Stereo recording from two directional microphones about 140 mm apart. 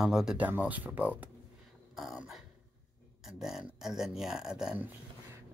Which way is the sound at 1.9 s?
5° right (ahead or behind).